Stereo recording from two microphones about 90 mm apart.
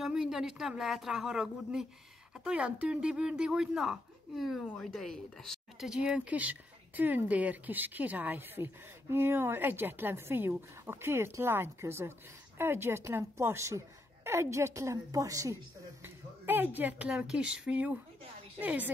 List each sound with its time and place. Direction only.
0.0 s a woman's voice: 5° right (ahead or behind); by 15.5 s 40° right (ahead or behind)
16.0 s a sound: 20° right (ahead or behind)
17.1 s speech: 10° right (ahead or behind)